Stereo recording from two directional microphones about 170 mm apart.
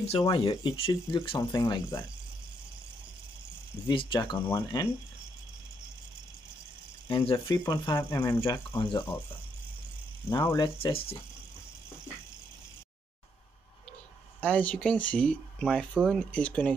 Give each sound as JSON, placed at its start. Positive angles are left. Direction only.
{"t": 0.0, "sound": "speech", "side_deg": 35}
{"t": 3.9, "sound": "speech", "side_deg": 30}
{"t": 4.4, "sound": "speech", "side_deg": 15}
{"t": 7.1, "sound": "speech", "side_deg": 25}
{"t": 8.4, "sound": "speech", "side_deg": 25}
{"t": 10.4, "sound": "speech", "side_deg": 25}
{"t": 14.4, "sound": "speech", "side_deg": 10}